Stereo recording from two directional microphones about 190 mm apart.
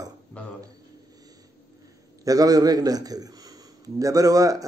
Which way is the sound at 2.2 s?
20° right (ahead or behind).